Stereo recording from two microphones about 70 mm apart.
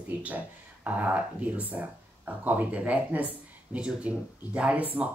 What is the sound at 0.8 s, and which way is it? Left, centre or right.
Speech, right.